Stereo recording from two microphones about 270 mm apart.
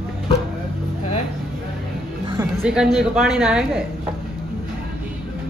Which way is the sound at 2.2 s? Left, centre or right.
Centre.